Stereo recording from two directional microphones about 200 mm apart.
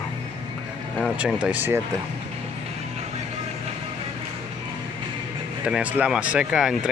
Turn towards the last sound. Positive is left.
turn(degrees=-5)  # may be behind; listen again after turning